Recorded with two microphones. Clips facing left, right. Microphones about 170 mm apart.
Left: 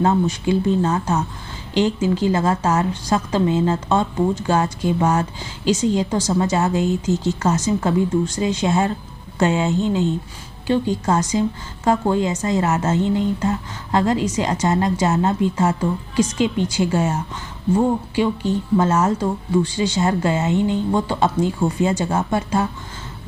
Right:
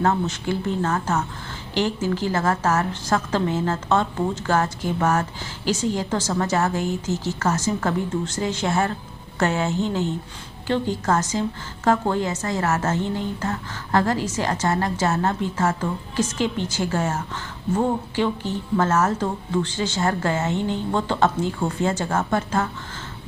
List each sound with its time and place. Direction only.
0.0 s a woman's voice: 15° left (ahead or behind)